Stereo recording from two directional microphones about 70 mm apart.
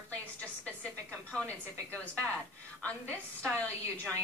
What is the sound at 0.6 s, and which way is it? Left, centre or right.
A woman's voice, centre.